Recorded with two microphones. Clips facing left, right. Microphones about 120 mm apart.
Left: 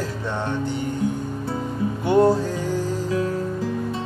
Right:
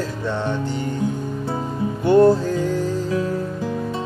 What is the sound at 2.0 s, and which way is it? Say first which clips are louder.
Music: right 4 dB; 15° left (ahead or behind).